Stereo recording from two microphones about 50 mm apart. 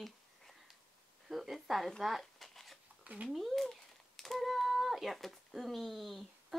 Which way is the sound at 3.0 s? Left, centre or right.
Right.